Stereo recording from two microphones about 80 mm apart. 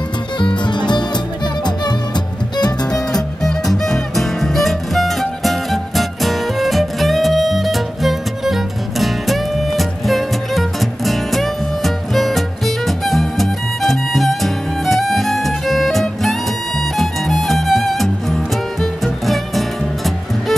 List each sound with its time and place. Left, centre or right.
0.4 s music: left
2.9 s music: centre